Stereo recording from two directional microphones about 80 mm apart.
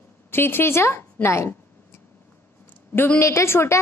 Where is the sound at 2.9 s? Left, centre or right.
Left.